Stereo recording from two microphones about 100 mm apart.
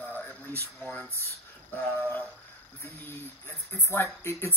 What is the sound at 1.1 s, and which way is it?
Speech, 30° right (ahead or behind).